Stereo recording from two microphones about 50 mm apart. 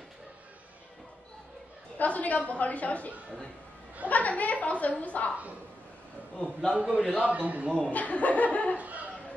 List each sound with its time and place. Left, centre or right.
2.0 s a woman's voice: left
4.1 s a woman's voice: left
6.7 s a man's voice: centre
7.9 s a woman's voice: left
8.7 s a sound: right